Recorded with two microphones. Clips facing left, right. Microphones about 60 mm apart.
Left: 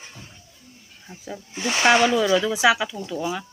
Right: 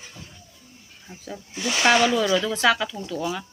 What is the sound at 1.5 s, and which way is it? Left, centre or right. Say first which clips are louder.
Speech: left 1 dB; left.